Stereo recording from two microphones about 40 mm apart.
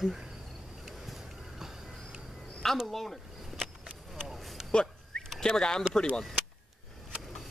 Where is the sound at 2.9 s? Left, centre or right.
Centre.